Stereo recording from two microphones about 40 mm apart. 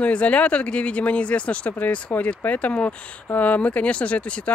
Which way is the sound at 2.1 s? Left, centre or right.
Left.